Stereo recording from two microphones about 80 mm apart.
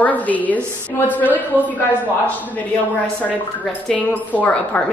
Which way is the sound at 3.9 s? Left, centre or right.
Centre.